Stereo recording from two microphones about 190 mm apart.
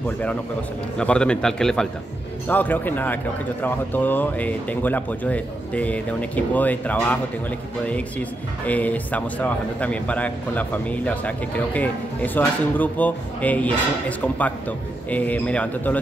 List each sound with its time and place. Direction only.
0.9 s a man's voice: 5° left (ahead or behind)